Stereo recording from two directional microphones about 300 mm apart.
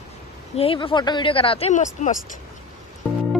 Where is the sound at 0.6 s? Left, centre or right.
Centre.